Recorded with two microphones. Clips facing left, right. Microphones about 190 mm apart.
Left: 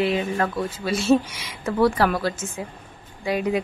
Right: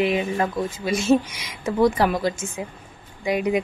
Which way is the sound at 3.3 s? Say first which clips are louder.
Right 1 dB; 15° right (ahead or behind).